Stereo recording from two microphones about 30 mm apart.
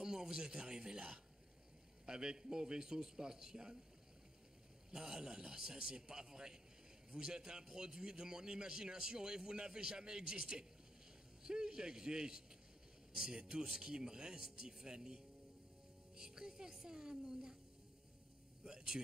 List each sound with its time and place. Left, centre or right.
0.0 s a man's voice: right
4.9 s a man's voice: right
16.2 s a woman's voice: right
18.7 s a sound: right